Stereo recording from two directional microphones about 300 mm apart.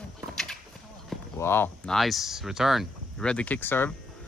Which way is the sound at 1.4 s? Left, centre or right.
Centre.